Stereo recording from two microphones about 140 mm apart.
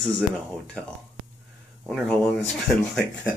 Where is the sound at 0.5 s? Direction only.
5° left (ahead or behind).